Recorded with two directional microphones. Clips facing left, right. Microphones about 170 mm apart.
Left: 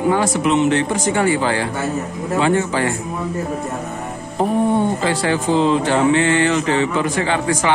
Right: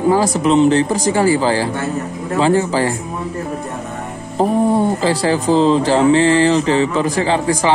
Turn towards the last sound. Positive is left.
turn(degrees=-30)  # may be behind; listen again after turning